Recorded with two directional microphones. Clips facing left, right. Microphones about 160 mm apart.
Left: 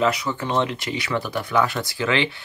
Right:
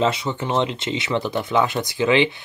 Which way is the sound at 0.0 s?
25° right (ahead or behind).